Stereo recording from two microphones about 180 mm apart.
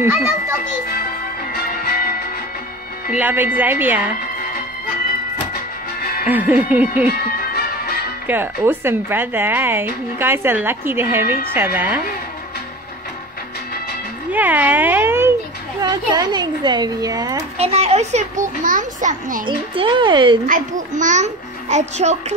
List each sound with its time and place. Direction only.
0.0 s speech: 15° right (ahead or behind)
1.5 s music: 55° left (ahead or behind)
3.1 s speech: 10° right (ahead or behind)
6.2 s speech: 10° right (ahead or behind)
8.3 s speech: 10° right (ahead or behind)
14.3 s speech: 10° right (ahead or behind)
17.6 s a child's voice: 35° right (ahead or behind)
19.4 s speech: 30° right (ahead or behind)
20.4 s a child's voice: 45° right (ahead or behind)